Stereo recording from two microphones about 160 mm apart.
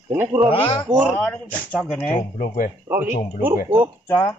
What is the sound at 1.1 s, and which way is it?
Speech, 10° left (ahead or behind).